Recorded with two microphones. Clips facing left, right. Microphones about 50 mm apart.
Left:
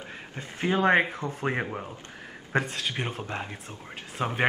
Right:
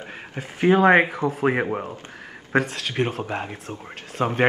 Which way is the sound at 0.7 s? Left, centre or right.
Centre.